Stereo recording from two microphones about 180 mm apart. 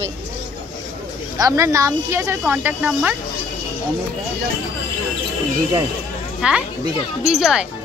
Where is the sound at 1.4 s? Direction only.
15° right (ahead or behind).